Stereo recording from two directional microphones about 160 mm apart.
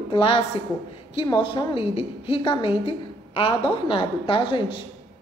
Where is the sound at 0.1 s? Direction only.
35° left (ahead or behind).